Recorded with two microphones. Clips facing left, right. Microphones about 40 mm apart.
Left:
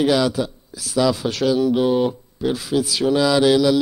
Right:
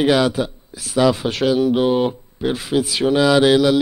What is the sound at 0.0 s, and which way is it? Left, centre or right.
Speech, right.